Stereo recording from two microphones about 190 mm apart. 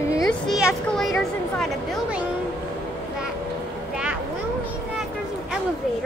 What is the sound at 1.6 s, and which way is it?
Speech, 5° right (ahead or behind).